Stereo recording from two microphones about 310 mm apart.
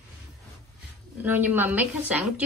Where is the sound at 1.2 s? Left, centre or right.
Centre.